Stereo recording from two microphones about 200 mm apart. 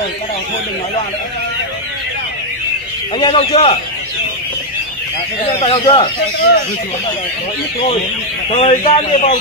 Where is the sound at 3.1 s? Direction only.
25° left (ahead or behind).